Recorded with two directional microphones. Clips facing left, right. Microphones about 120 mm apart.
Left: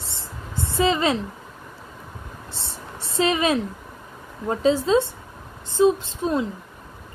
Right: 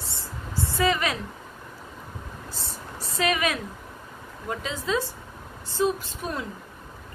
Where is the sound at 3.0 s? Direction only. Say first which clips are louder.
Left 4 dB; 25° left (ahead or behind).